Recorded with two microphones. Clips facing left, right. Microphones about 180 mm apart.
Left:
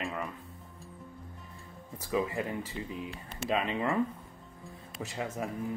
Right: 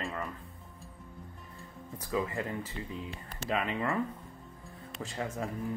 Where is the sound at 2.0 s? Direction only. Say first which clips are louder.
Left 2 dB; 15° left (ahead or behind).